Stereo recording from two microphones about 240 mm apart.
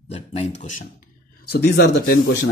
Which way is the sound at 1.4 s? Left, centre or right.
Left.